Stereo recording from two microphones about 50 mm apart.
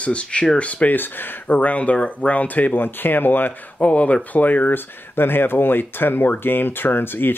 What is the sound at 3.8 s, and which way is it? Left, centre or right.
Speech, left.